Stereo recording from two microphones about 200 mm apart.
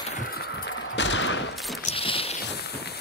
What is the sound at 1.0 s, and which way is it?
Fusillade, 65° left (ahead or behind).